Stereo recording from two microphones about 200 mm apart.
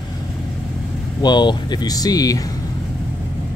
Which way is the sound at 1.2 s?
20° left (ahead or behind).